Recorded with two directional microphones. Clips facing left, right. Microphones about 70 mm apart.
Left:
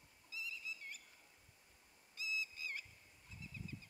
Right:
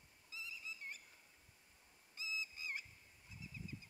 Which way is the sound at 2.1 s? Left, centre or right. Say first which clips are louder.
Left 2 dB; right.